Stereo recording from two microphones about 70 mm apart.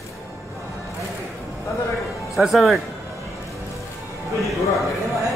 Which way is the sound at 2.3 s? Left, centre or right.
Centre.